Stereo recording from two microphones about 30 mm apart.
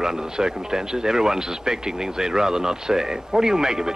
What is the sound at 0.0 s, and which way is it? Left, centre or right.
Speech, centre.